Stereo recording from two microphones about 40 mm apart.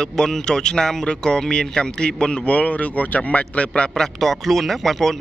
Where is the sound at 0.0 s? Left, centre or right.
Centre.